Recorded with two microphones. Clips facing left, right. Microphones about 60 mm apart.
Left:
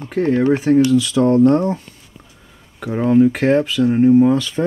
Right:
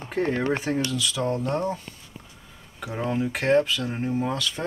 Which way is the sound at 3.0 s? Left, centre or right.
Centre.